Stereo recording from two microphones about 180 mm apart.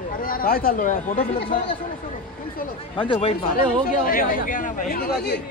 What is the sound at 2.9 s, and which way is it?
Speech, 30° left (ahead or behind).